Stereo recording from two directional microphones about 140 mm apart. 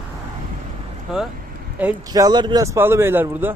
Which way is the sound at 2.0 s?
30° right (ahead or behind).